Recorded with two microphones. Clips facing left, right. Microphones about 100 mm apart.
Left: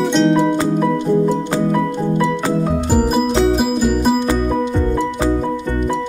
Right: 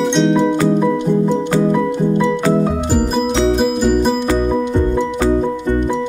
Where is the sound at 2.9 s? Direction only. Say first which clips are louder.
Left 1 dB; 5° left (ahead or behind).